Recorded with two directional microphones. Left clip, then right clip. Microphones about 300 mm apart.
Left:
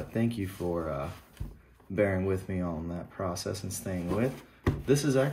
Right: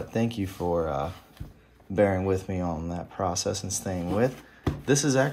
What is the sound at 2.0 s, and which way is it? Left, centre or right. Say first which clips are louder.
Speech: right 5 dB; centre.